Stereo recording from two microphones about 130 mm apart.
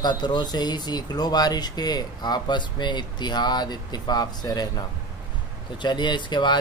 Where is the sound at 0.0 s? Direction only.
35° left (ahead or behind).